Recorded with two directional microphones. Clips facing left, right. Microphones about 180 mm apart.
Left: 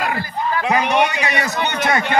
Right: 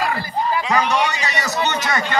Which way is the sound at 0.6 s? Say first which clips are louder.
Left 4 dB; 60° left (ahead or behind).